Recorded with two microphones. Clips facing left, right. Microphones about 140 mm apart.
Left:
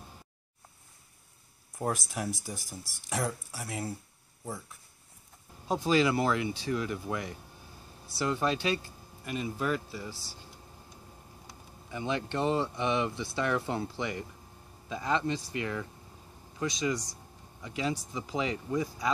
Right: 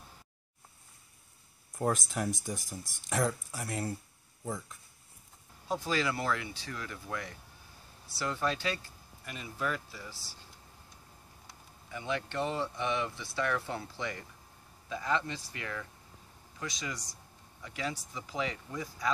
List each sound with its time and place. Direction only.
1.8 s speech: 5° left (ahead or behind)
5.7 s speech: 20° left (ahead or behind)
11.9 s speech: 25° left (ahead or behind)